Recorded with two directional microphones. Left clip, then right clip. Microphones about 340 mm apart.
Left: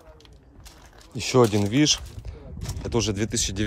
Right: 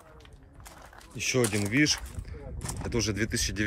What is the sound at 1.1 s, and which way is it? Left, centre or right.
Speech, left.